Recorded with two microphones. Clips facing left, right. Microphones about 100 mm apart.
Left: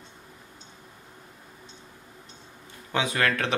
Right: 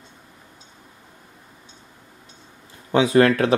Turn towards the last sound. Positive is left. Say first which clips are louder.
# right 10 dB
turn(degrees=-35)  # may be behind; listen again after turning